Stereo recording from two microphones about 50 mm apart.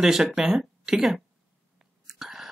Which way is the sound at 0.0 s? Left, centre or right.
Centre.